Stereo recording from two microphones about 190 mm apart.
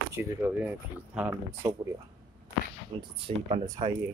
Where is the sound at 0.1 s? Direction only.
10° right (ahead or behind).